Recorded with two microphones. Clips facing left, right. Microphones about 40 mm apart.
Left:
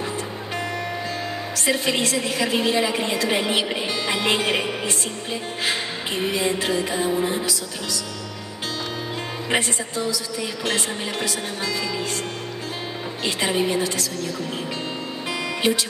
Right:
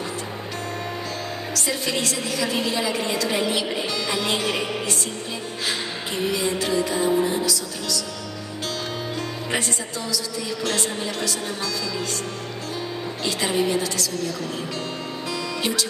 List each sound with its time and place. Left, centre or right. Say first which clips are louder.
1.5 s music: left 4 dB; left
9.5 s a woman's voice: left 5 dB; left
13.2 s music: left 1 dB; left
15.6 s a woman's voice: left 5 dB; left